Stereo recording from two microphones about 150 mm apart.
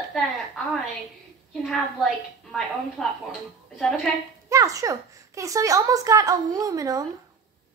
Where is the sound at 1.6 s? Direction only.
Centre (ahead or behind).